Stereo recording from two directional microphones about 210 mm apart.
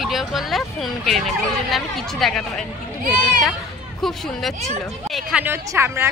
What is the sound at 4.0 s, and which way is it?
A woman's voice, centre (ahead or behind).